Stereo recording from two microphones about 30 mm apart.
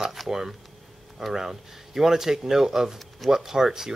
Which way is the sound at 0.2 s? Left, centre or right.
Centre.